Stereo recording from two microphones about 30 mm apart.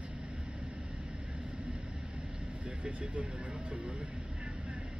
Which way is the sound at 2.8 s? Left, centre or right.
Right.